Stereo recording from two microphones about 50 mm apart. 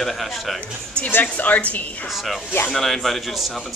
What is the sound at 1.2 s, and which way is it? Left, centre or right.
Speech, left.